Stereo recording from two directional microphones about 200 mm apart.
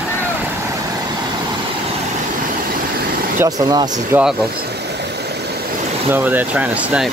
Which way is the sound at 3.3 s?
10° right (ahead or behind).